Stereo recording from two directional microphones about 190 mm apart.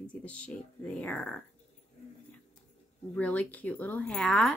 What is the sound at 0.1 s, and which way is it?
Speech, 5° left (ahead or behind).